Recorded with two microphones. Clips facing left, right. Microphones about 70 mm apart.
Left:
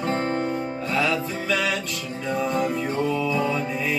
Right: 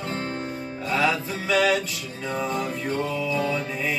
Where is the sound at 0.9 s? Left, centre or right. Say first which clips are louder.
Right 1 dB; centre.